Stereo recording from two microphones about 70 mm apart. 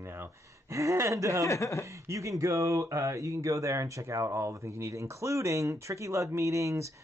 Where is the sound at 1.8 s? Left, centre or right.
Right.